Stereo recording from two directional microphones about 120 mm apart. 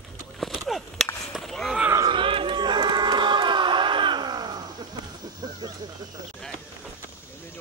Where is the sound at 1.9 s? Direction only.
30° right (ahead or behind).